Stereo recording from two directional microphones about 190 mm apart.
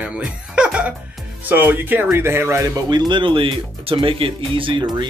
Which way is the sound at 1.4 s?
10° right (ahead or behind).